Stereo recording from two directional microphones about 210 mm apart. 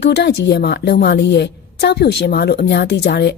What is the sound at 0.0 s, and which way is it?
A woman's voice, 50° left (ahead or behind).